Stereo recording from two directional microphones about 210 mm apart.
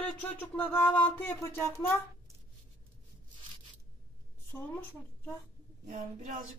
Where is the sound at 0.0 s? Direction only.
10° left (ahead or behind).